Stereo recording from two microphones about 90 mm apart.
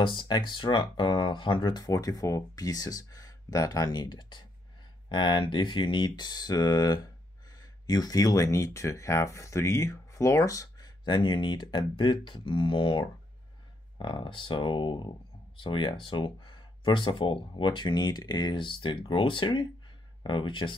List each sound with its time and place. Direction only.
0.0 s speech: 60° left (ahead or behind); by 10.9 s 40° left (ahead or behind)
11.1 s speech: 60° left (ahead or behind)